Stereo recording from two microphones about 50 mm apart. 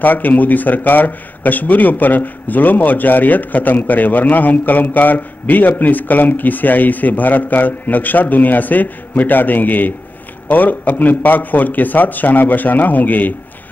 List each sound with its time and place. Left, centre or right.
0.0 s a man's voice: left